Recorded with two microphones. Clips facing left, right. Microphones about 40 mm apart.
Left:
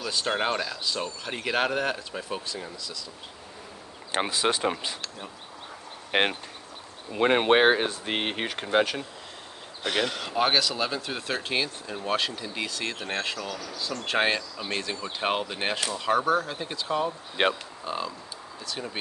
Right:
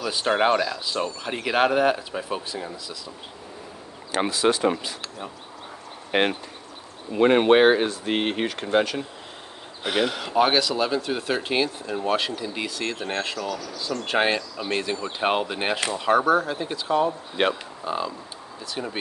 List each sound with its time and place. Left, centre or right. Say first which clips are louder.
0.0 s speech: right 6 dB; centre
4.3 s speech: right 6 dB; left
7.2 s speech: right 4 dB; centre
9.8 s speech: right 3 dB; centre